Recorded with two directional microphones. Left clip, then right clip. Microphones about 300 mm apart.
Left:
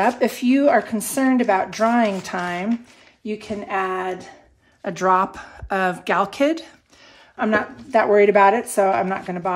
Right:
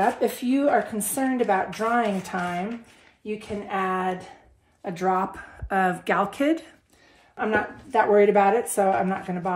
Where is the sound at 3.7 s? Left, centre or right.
Left.